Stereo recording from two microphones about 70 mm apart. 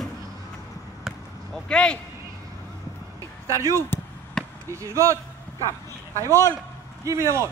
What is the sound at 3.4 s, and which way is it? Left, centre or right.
Speech, right.